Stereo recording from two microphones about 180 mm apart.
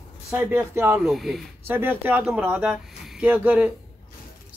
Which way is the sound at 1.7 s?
10° right (ahead or behind).